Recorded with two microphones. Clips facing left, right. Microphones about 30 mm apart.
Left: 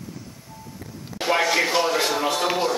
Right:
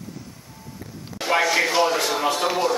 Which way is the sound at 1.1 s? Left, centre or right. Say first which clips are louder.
Right 1 dB; centre.